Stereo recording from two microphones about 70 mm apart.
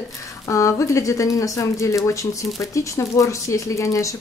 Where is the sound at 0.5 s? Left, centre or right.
Left.